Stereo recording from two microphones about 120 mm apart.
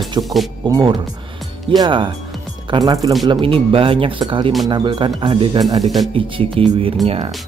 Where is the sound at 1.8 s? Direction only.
45° right (ahead or behind).